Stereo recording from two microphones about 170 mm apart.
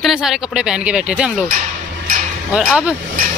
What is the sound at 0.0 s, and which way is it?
Speech, 5° right (ahead or behind).